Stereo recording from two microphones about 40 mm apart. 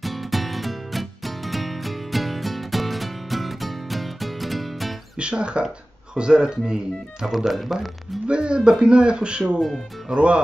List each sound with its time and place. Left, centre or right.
0.0 s music: centre
5.2 s speech: right
7.2 s speech: centre
8.3 s speech: right